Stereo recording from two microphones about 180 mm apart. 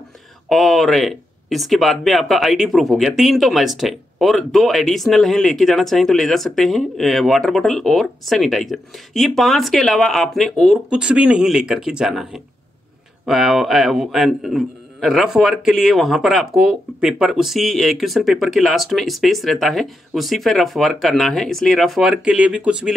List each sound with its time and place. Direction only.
0.5 s speech: centre (ahead or behind)